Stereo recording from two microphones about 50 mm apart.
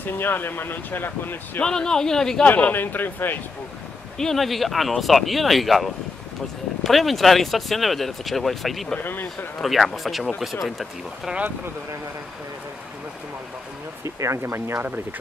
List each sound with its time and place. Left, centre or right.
0.0 s speech: left
1.6 s speech: centre
2.4 s a man's voice: left
4.2 s speech: centre
9.0 s a man's voice: left
9.6 s speech: centre
14.0 s speech: right